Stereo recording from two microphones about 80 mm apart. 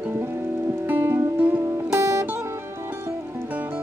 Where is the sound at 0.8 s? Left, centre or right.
Right.